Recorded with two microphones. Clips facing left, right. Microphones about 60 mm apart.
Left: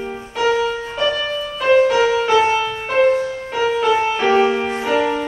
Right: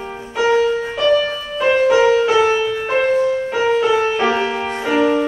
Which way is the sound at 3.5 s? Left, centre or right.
Centre.